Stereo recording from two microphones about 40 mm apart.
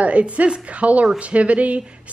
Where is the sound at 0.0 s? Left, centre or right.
Right.